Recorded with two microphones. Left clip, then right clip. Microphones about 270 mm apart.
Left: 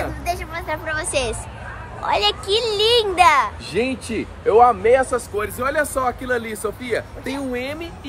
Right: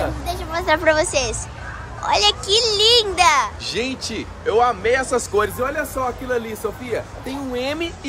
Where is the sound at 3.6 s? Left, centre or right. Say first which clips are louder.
Left 1 dB; left.